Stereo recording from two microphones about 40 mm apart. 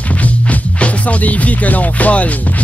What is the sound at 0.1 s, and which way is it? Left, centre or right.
Music, left.